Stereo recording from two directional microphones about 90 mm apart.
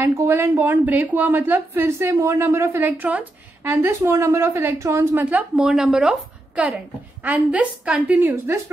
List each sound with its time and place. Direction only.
0.0 s a woman's voice: 25° right (ahead or behind)
5.2 s a woman's voice: 15° right (ahead or behind)